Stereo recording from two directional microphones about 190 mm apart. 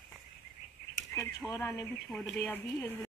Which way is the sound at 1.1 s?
15° left (ahead or behind).